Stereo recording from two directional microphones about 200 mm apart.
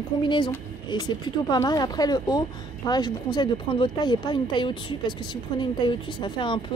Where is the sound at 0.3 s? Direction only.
25° left (ahead or behind).